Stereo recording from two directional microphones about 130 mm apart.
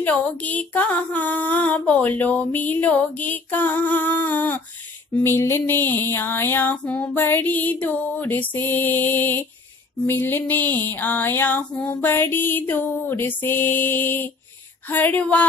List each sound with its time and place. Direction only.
0.0 s female singing: 10° left (ahead or behind)